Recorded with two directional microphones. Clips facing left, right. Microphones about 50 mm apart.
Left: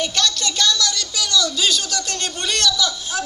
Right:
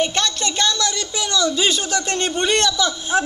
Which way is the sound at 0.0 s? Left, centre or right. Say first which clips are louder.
Right 1 dB; right.